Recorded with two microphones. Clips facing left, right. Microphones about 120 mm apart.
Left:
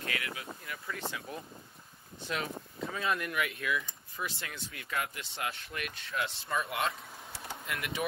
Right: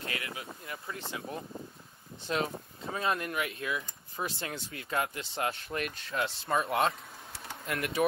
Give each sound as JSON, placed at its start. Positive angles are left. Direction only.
{"t": 0.0, "sound": "a sound", "side_deg": -30}
{"t": 2.2, "sound": "speech", "side_deg": -30}
{"t": 7.6, "sound": "speech", "side_deg": -45}